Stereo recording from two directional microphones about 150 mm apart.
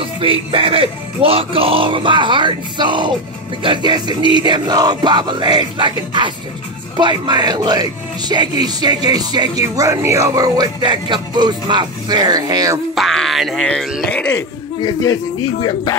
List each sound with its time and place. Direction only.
0.2 s speech: 35° right (ahead or behind)
7.0 s speech: 30° right (ahead or behind)
12.9 s speech: centre (ahead or behind)